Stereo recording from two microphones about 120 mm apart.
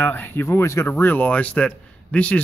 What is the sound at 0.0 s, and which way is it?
Speech, 15° left (ahead or behind).